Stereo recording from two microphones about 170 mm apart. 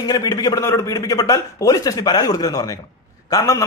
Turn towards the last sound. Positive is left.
turn(degrees=20)  # may be behind; listen again after turning